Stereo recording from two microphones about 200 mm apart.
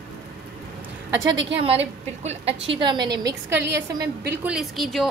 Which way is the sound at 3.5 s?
60° right (ahead or behind).